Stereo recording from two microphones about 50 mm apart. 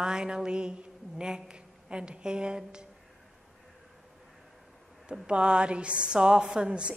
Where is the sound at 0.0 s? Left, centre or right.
Centre.